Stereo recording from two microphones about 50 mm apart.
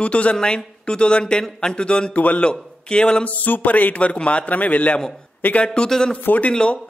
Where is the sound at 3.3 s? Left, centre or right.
Left.